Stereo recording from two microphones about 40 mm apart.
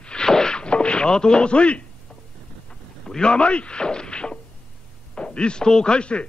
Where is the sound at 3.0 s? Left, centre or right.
Left.